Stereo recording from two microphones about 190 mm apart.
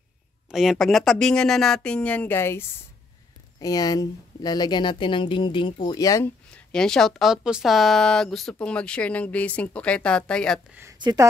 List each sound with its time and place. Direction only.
0.5 s speech: centre (ahead or behind); by 6.3 s 15° left (ahead or behind)
6.5 s speech: 5° left (ahead or behind)
10.7 s speech: 10° right (ahead or behind)